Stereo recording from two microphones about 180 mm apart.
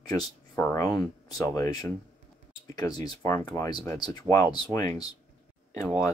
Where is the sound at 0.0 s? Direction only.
20° left (ahead or behind).